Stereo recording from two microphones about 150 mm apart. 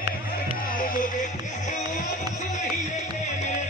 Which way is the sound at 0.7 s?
65° left (ahead or behind).